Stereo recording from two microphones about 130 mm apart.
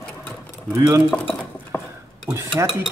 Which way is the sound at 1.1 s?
10° left (ahead or behind).